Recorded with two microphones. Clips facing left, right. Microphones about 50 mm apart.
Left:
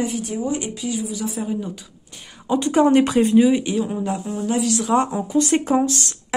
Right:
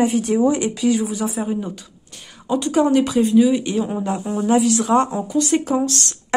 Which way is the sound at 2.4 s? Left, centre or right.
Left.